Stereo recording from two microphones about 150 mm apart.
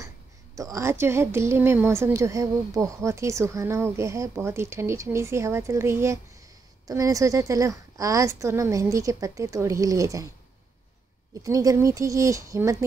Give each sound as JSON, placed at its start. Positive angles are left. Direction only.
{"t": 0.6, "sound": "a woman's voice", "side_deg": -20}
{"t": 11.3, "sound": "a woman's voice", "side_deg": -20}